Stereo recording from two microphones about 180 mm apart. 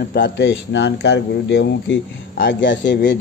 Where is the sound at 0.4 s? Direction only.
90° left.